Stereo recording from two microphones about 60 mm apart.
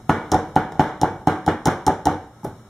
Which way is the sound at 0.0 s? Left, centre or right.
Centre.